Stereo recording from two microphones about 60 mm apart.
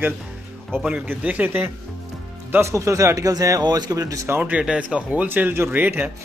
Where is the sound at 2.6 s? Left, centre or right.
Right.